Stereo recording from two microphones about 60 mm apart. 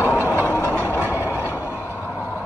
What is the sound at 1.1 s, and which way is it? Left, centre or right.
Train, right.